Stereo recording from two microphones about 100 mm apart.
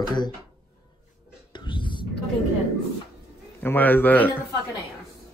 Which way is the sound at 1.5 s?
55° left (ahead or behind).